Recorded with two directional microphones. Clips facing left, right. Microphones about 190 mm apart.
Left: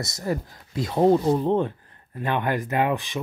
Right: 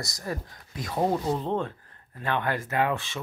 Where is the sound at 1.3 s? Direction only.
15° left (ahead or behind).